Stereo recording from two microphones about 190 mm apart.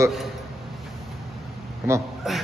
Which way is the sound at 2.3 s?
Centre (ahead or behind).